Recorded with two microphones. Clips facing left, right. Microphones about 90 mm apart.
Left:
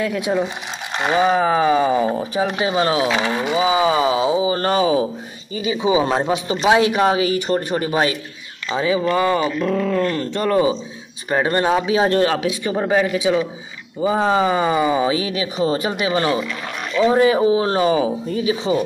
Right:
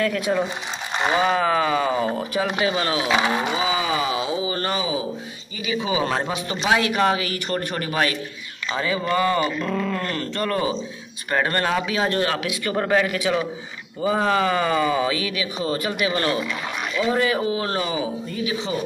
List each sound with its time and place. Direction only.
0.0 s speech: 10° left (ahead or behind)
1.3 s speech: 20° left (ahead or behind)
2.3 s speech: 25° left (ahead or behind)
4.6 s speech: 40° left (ahead or behind)
5.6 s speech: 20° left (ahead or behind); by 10.1 s centre (ahead or behind)
10.1 s speech: 20° left (ahead or behind)
12.6 s speech: 20° left (ahead or behind)
17.8 s speech: 35° left (ahead or behind)